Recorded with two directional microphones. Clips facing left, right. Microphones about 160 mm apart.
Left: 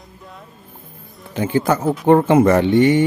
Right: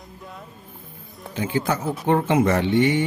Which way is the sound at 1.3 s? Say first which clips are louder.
Left 6 dB; 45° left (ahead or behind).